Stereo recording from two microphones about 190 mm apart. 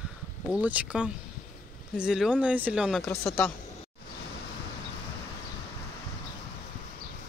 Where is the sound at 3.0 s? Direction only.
5° left (ahead or behind).